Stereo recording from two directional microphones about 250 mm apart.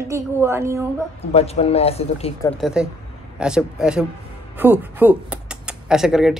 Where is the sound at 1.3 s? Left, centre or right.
Left.